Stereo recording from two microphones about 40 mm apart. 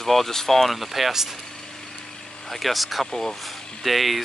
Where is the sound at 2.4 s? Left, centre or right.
Centre.